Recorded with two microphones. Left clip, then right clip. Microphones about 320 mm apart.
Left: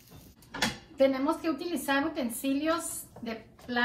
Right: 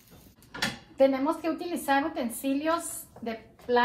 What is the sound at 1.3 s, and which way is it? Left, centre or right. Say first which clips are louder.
A woman's voice: right 1 dB; centre.